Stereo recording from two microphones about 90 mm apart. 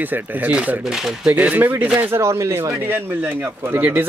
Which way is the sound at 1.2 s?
20° right (ahead or behind).